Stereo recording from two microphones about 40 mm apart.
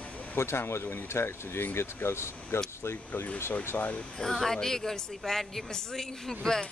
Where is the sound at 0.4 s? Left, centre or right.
Left.